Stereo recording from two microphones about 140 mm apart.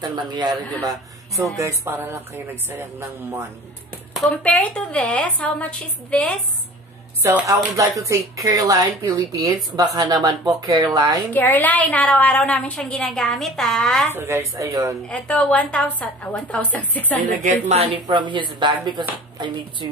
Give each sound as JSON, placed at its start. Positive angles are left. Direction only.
{"t": 0.0, "sound": "speech", "side_deg": -30}
{"t": 4.2, "sound": "a woman's voice", "side_deg": 10}
{"t": 7.2, "sound": "speech", "side_deg": -20}
{"t": 11.3, "sound": "a woman's voice", "side_deg": 10}
{"t": 14.1, "sound": "speech", "side_deg": -20}
{"t": 15.0, "sound": "a woman's voice", "side_deg": 10}
{"t": 17.3, "sound": "a woman's voice", "side_deg": -60}
{"t": 18.0, "sound": "speech", "side_deg": -35}